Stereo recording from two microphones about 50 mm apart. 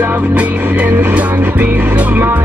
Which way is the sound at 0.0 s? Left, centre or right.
Right.